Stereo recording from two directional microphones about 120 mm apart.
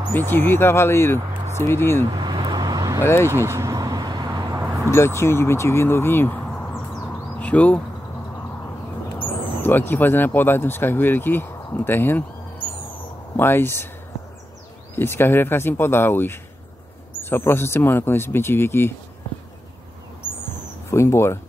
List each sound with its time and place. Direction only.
0.3 s speech: 20° left (ahead or behind)
2.1 s vehicle: 40° right (ahead or behind)
3.0 s speech: 20° left (ahead or behind)
3.3 s vehicle: 20° right (ahead or behind)
4.9 s speech: 20° left (ahead or behind)
9.6 s speech: 15° left (ahead or behind)
13.4 s speech: 20° left (ahead or behind)
15.0 s speech: 20° left (ahead or behind)
20.9 s speech: 20° left (ahead or behind)